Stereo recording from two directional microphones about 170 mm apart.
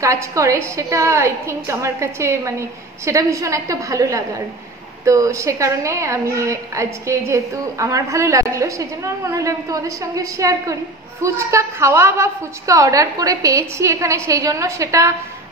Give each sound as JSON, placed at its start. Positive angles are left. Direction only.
{"t": 0.0, "sound": "a woman's voice", "side_deg": -20}